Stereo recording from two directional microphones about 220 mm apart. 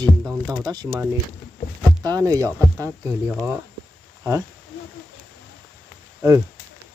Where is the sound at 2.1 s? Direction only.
15° right (ahead or behind).